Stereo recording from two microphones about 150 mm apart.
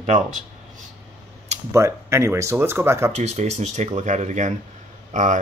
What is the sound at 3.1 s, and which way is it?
Speech, 45° right (ahead or behind).